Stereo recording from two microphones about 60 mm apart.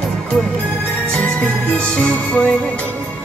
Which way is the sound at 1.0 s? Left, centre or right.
Centre.